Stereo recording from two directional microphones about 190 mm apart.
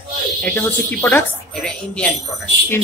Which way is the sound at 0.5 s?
10° left (ahead or behind).